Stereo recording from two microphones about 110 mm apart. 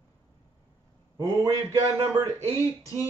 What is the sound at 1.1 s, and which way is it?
Speech, 35° right (ahead or behind).